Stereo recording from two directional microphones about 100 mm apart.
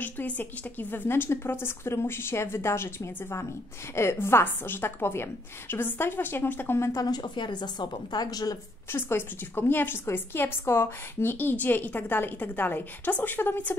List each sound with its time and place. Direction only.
0.0 s a woman's voice: 20° left (ahead or behind)
7.1 s speech: 50° left (ahead or behind)
8.9 s a woman's voice: 20° left (ahead or behind)